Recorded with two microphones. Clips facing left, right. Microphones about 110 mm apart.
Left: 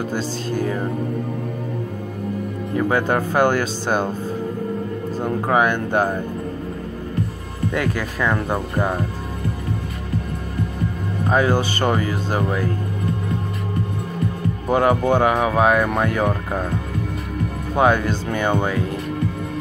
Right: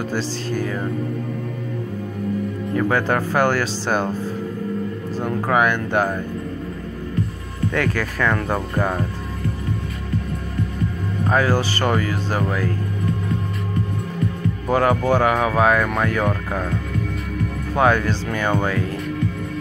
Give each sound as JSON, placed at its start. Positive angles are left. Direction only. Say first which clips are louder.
{"t": 0.6, "sound": "speech", "louder": "left 3 dB", "side_deg": 25}
{"t": 2.7, "sound": "speech", "louder": "left 1 dB", "side_deg": 20}
{"t": 5.2, "sound": "speech", "louder": "even", "side_deg": 25}
{"t": 7.7, "sound": "speech", "louder": "right 1 dB", "side_deg": 20}
{"t": 11.2, "sound": "speech", "louder": "left 1 dB", "side_deg": 20}
{"t": 14.7, "sound": "speech", "louder": "left 1 dB", "side_deg": 20}
{"t": 17.7, "sound": "speech", "louder": "left 1 dB", "side_deg": 20}